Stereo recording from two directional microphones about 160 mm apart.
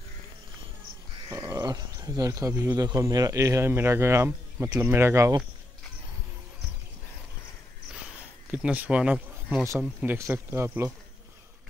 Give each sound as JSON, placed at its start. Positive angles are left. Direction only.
{"t": 1.3, "sound": "speech", "side_deg": -20}
{"t": 8.5, "sound": "speech", "side_deg": -10}